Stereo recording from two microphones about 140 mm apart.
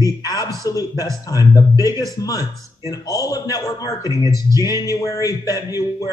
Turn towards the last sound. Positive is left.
turn(degrees=25)  # may be behind; listen again after turning